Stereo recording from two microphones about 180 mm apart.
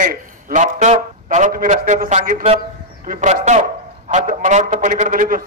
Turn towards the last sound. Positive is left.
turn(degrees=-45)  # may be behind; listen again after turning